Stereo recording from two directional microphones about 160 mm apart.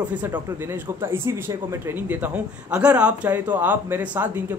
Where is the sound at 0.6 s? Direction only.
15° right (ahead or behind).